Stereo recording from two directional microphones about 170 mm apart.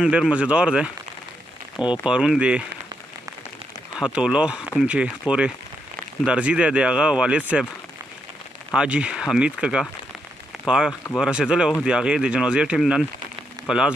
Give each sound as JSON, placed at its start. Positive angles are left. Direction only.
{"t": 0.0, "sound": "speech", "side_deg": -5}
{"t": 2.0, "sound": "speech", "side_deg": -5}
{"t": 4.0, "sound": "speech", "side_deg": -5}
{"t": 6.2, "sound": "speech", "side_deg": -5}
{"t": 8.7, "sound": "speech", "side_deg": -5}